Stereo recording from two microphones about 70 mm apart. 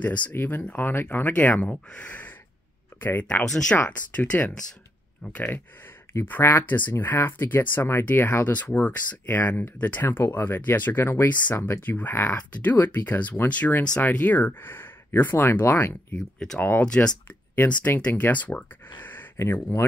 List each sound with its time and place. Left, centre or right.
0.0 s speech: left
3.4 s speech: centre
3.7 s speech: left
16.8 s speech: centre
18.9 s a sound: left